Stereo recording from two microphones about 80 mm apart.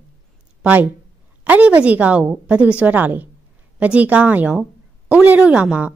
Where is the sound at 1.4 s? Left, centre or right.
Centre.